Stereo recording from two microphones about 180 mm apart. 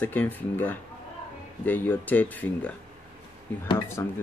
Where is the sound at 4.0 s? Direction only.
20° left (ahead or behind).